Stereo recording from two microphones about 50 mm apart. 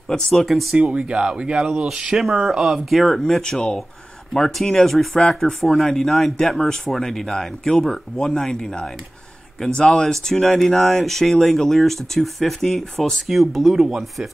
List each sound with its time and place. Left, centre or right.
0.3 s speech: centre
0.7 s speech: centre
3.2 s speech: centre